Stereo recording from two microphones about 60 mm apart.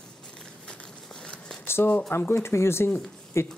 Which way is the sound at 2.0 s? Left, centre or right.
Left.